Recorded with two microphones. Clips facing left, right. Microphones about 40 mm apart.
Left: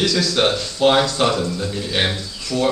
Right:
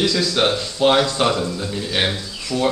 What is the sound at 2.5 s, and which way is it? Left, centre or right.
Speech, right.